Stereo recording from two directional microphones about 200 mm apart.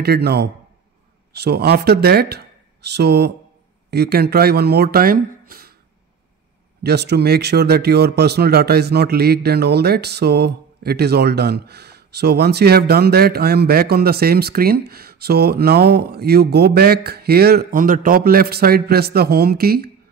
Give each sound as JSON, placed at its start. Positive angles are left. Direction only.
{"t": 0.0, "sound": "speech", "side_deg": -55}
{"t": 6.8, "sound": "speech", "side_deg": -55}